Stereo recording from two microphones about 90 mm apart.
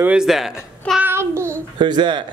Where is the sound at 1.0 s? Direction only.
25° right (ahead or behind).